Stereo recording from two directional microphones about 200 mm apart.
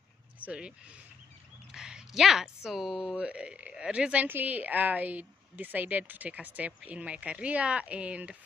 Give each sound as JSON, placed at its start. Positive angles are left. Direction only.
{"t": 0.5, "sound": "speech", "side_deg": -5}